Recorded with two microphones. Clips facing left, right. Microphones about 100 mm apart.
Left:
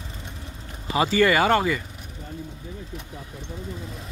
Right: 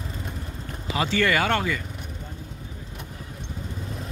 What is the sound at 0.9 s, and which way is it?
Speech, 10° left (ahead or behind).